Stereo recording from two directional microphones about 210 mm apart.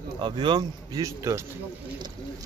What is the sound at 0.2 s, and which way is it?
Speech, 20° right (ahead or behind).